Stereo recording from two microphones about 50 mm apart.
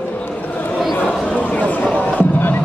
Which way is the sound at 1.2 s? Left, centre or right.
Left.